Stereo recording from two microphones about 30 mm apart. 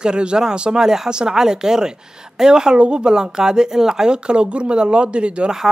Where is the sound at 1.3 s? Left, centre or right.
Centre.